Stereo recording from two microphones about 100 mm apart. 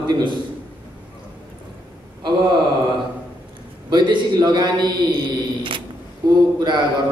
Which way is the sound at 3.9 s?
50° right (ahead or behind).